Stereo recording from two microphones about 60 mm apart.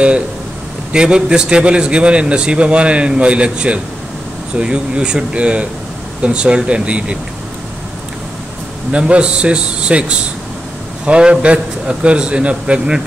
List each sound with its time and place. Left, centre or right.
0.9 s a man's voice: centre
8.9 s a man's voice: centre